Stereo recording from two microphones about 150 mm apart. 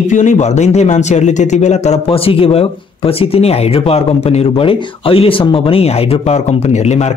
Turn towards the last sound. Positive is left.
turn(degrees=45)  # may be behind; listen again after turning